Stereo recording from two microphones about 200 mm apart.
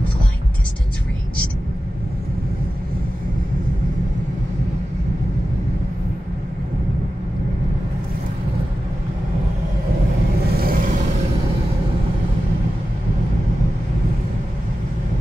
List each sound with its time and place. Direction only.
10.4 s vehicle: 50° right (ahead or behind)